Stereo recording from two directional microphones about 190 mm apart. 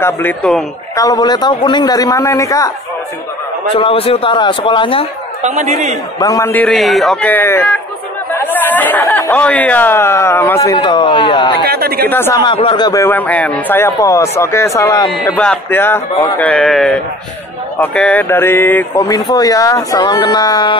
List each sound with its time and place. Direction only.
0.0 s speech: 10° left (ahead or behind)
0.9 s a man's voice: 20° left (ahead or behind)
3.7 s a man's voice: 30° left (ahead or behind)
5.4 s speech: 40° right (ahead or behind)
6.1 s speech: 15° left (ahead or behind)
11.6 s speech: 55° right (ahead or behind)
12.1 s speech: 10° left (ahead or behind)
12.4 s a man's voice: 25° left (ahead or behind)